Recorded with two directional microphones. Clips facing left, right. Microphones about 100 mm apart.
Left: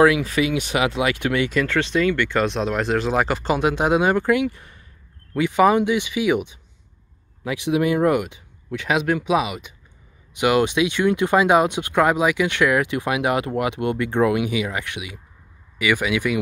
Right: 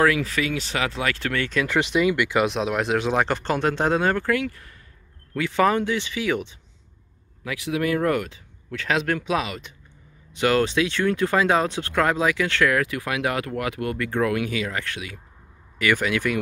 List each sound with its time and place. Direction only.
0.0 s speech: 20° left (ahead or behind)
1.7 s speech: 15° right (ahead or behind); by 16.3 s 10° left (ahead or behind)